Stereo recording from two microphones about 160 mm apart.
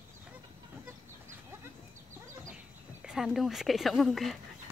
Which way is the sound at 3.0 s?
Centre (ahead or behind).